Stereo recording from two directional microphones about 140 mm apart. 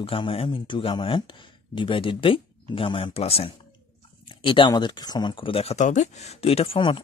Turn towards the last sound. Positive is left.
turn(degrees=35)  # may be behind; listen again after turning